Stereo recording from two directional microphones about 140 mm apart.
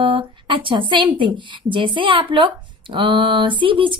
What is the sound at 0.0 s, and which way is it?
A woman's voice, 40° right (ahead or behind).